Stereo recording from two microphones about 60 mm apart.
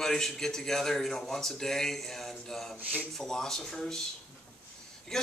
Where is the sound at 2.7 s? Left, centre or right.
Right.